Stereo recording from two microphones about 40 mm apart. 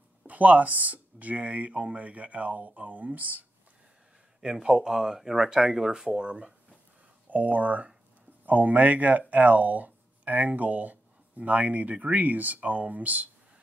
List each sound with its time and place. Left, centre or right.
0.3 s speech: right
4.4 s speech: centre
7.2 s speech: right